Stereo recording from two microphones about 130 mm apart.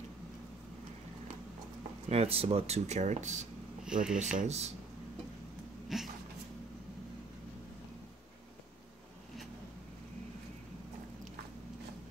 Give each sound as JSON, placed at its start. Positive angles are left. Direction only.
{"t": 2.0, "sound": "speech", "side_deg": -50}
{"t": 3.8, "sound": "speech", "side_deg": -5}
{"t": 4.2, "sound": "speech", "side_deg": -65}
{"t": 5.9, "sound": "a sound", "side_deg": -5}